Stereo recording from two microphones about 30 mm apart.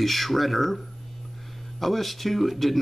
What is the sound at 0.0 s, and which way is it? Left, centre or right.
Speech, centre.